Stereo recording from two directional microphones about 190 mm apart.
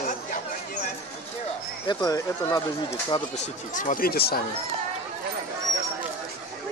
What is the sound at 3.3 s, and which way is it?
Speech, 40° left (ahead or behind).